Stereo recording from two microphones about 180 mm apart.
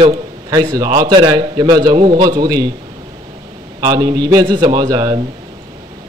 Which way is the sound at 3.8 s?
25° right (ahead or behind).